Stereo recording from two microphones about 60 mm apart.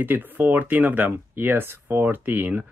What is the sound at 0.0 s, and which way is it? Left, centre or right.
Speech, right.